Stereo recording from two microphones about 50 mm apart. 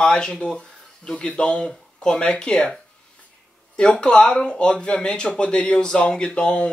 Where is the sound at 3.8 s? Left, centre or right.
Centre.